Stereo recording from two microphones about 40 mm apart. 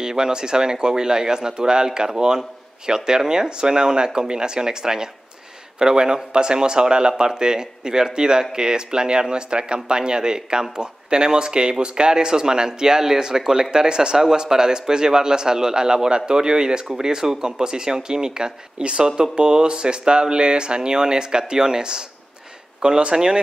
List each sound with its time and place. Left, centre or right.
0.0 s speech: centre